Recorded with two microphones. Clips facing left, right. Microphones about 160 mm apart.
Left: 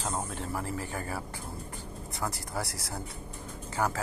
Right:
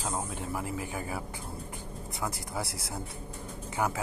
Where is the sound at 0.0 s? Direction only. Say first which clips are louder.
Even; 10° right (ahead or behind).